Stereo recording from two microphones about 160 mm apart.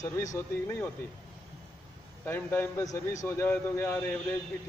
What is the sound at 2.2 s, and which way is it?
Speech, 15° left (ahead or behind).